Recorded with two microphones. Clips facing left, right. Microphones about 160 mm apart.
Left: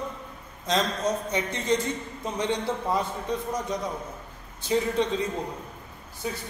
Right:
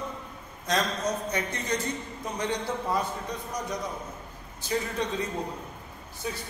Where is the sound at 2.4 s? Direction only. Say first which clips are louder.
Left 3 dB; 25° left (ahead or behind).